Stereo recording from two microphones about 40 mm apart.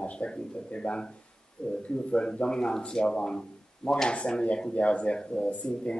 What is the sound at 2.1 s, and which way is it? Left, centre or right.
A man's voice, left.